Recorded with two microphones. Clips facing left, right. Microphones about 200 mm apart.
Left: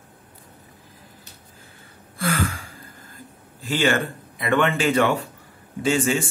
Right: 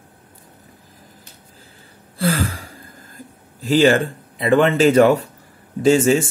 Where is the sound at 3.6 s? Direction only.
40° right (ahead or behind).